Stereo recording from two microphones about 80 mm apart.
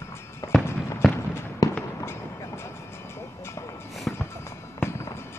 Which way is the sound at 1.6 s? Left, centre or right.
Left.